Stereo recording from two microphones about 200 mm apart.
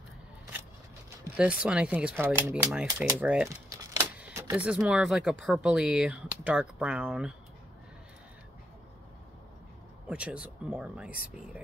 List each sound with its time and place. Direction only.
1.2 s speech: 5° right (ahead or behind)
10.0 s speech: 5° right (ahead or behind)